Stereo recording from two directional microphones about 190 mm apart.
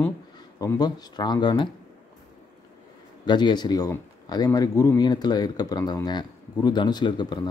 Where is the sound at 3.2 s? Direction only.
25° left (ahead or behind).